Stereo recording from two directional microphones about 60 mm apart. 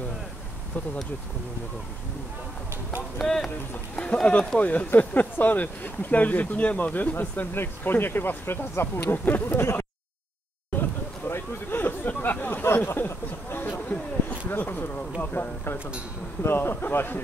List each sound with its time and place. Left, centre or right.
3.2 s speech: centre
4.0 s speech: centre; by 9.8 s left
10.8 s a sound: left
16.4 s speech: left